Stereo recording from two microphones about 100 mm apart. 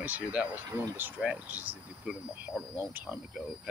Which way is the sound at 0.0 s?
15° right (ahead or behind).